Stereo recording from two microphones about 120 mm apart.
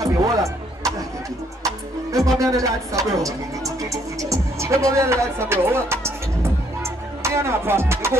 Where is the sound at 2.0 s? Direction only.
25° right (ahead or behind).